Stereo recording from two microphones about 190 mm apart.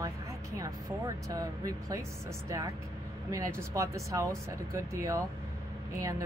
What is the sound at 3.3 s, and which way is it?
Speech, 15° right (ahead or behind).